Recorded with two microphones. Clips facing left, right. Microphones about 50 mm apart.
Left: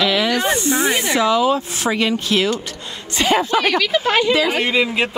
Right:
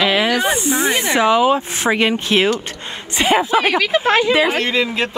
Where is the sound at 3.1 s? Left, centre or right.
Centre.